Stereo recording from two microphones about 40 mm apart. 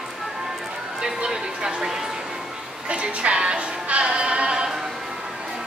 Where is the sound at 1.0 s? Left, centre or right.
Centre.